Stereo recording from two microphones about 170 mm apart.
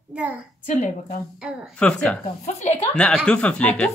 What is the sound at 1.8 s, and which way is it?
Speech, 5° left (ahead or behind).